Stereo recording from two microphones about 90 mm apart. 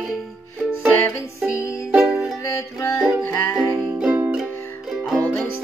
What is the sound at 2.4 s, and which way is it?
Music, 35° left (ahead or behind).